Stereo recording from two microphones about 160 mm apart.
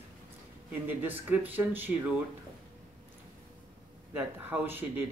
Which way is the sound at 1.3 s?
10° right (ahead or behind).